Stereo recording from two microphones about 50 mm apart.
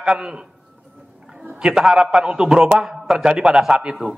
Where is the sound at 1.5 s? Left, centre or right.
Centre.